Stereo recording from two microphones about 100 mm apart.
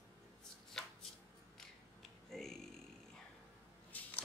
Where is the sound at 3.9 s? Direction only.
15° left (ahead or behind).